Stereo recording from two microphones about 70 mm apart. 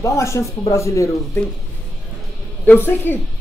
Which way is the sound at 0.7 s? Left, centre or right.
Left.